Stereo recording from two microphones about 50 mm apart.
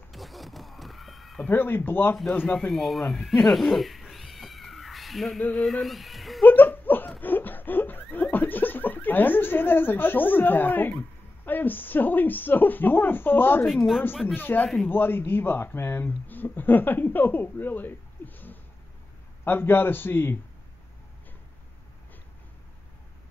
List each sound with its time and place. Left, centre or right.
0.1 s cat: centre
1.5 s a man's voice: left
2.7 s cat: centre
5.5 s speech: centre
6.4 s a sound: left
13.7 s speech: centre
14.2 s a man's voice: left